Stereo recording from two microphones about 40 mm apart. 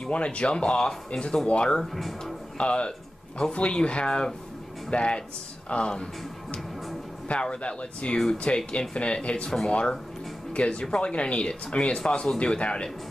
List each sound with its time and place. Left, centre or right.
0.1 s speech: left
1.8 s speech: centre
2.5 s speech: left
7.2 s speech: left